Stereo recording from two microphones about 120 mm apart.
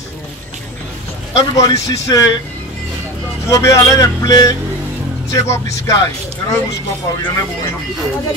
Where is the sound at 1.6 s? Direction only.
30° left (ahead or behind).